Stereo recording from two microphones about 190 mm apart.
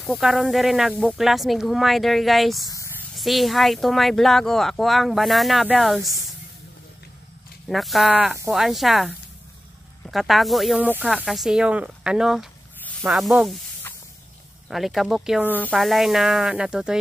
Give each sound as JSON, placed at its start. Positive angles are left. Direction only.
{"t": 0.0, "sound": "speech", "side_deg": 0}
{"t": 2.7, "sound": "a sound", "side_deg": 15}
{"t": 3.2, "sound": "speech", "side_deg": 0}
{"t": 7.6, "sound": "speech", "side_deg": 0}
{"t": 14.7, "sound": "speech", "side_deg": 0}
{"t": 15.4, "sound": "speech", "side_deg": 10}